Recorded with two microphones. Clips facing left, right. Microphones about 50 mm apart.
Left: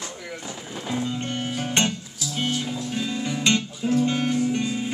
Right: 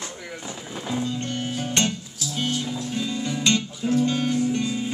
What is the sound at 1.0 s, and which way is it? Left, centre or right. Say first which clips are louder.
Music: even; left.